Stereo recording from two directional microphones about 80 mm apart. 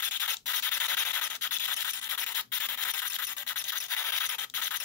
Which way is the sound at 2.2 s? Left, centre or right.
Left.